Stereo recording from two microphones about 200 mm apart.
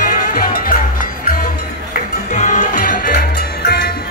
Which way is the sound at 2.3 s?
35° left (ahead or behind).